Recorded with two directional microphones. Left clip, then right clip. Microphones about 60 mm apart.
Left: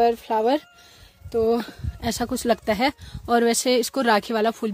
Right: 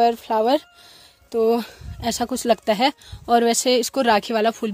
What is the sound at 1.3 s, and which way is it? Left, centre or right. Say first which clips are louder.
Speech: right 2 dB; right.